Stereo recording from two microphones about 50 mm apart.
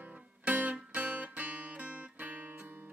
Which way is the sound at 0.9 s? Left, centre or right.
Right.